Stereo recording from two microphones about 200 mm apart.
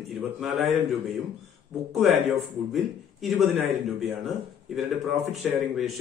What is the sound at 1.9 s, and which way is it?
A man's voice, centre (ahead or behind).